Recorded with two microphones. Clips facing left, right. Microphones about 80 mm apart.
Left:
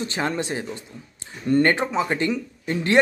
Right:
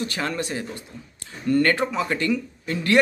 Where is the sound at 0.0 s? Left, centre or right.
Left.